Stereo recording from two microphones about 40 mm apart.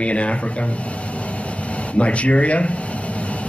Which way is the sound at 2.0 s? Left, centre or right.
Left.